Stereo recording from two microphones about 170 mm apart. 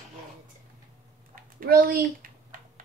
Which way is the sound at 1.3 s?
60° right (ahead or behind).